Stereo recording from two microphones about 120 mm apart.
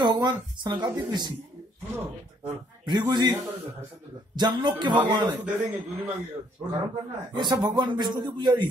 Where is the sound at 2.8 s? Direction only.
40° right (ahead or behind).